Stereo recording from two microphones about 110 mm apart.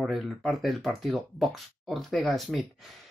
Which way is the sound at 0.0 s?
Centre (ahead or behind).